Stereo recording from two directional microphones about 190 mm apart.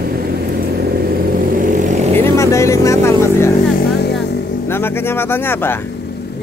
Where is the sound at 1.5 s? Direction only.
45° right (ahead or behind).